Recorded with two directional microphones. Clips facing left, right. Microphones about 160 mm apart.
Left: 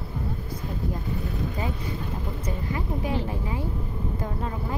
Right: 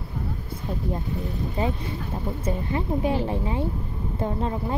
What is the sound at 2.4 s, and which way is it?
A woman's voice, 30° right (ahead or behind).